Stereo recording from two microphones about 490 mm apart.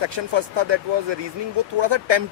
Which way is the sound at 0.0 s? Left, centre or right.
Right.